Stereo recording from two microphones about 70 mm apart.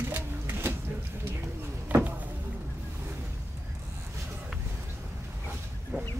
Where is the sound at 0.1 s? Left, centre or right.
Right.